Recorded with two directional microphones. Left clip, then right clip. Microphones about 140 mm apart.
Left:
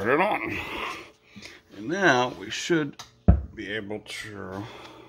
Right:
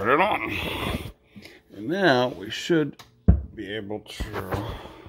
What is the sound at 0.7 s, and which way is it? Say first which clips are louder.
Speech: right 2 dB; 30° right (ahead or behind).